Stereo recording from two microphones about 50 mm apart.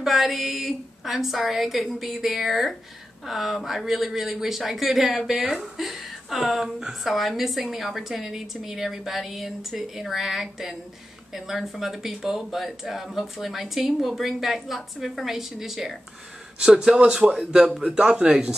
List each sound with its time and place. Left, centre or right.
0.0 s a woman's voice: centre
16.5 s a man's voice: centre
17.9 s speech: right